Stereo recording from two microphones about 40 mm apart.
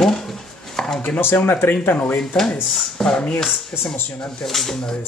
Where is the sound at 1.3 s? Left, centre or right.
Left.